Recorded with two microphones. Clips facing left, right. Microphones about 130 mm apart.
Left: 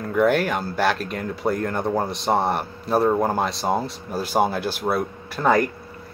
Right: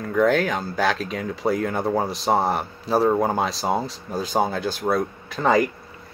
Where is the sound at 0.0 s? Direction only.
5° left (ahead or behind).